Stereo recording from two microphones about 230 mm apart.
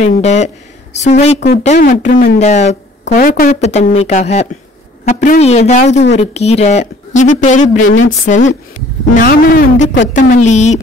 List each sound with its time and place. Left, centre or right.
0.0 s speech: left